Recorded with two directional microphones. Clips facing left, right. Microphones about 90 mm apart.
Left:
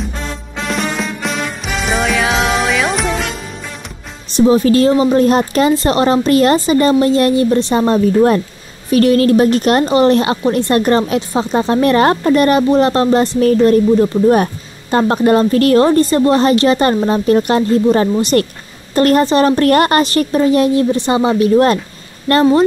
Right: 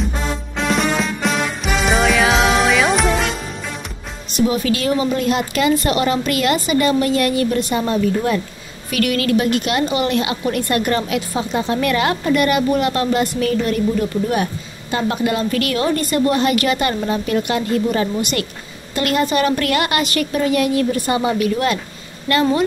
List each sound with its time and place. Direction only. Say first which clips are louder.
0.6 s music: right 1 dB; centre (ahead or behind)
4.3 s a woman's voice: left 7 dB; 30° left (ahead or behind)